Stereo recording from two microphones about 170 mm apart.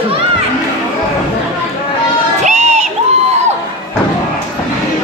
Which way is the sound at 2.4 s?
40° right (ahead or behind).